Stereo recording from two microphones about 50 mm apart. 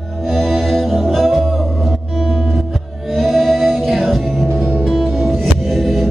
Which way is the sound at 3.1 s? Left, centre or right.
Centre.